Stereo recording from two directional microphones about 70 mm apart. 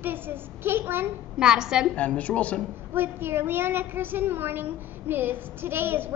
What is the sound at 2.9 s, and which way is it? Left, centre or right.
A woman's voice, right.